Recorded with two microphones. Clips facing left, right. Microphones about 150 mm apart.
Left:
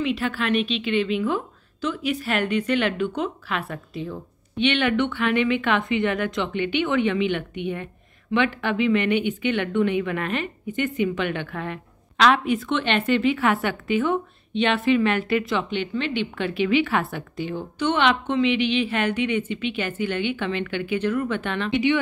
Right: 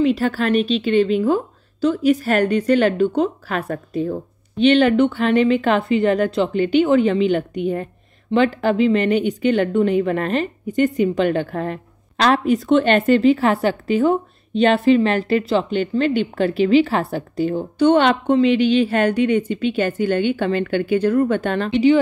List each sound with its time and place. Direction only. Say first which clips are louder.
0.0 s a woman's voice: right 7 dB; 40° right (ahead or behind)